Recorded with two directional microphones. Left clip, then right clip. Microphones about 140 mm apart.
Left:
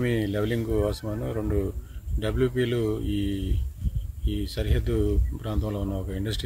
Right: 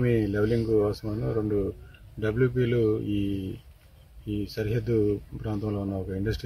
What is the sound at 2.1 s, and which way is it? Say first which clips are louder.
Speech: even; 30° left (ahead or behind).